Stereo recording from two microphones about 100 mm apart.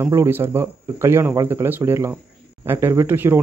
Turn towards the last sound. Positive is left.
turn(degrees=-20)  # may be behind; listen again after turning